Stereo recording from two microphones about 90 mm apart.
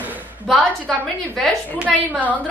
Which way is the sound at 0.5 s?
Centre (ahead or behind).